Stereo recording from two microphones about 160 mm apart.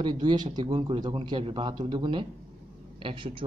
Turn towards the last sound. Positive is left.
turn(degrees=-30)  # may be behind; listen again after turning